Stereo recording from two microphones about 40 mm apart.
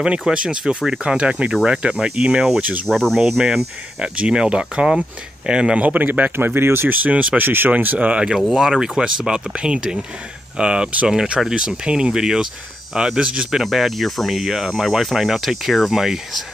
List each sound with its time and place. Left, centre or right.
0.3 s speech: right
1.0 s speech: right
1.5 s speech: centre
2.9 s speech: centre
3.2 s speech: centre
4.0 s speech: right
5.8 s speech: right
6.3 s speech: right
6.9 s speech: right
7.4 s speech: right
7.7 s speech: right
8.5 s speech: centre
13.5 s speech: centre